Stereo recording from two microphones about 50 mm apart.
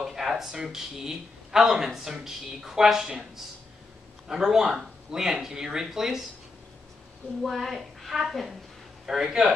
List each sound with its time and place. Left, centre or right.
0.0 s a man's voice: centre
4.3 s a man's voice: centre
7.4 s a woman's voice: centre